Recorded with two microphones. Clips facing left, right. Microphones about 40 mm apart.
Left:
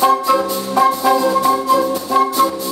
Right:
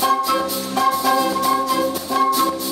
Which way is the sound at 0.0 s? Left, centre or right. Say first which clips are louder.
Left 4 dB; centre.